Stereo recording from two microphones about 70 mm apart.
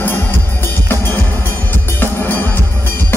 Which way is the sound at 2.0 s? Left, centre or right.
Left.